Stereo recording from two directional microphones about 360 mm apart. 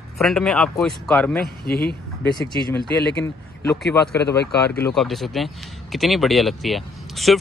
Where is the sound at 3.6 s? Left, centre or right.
Centre.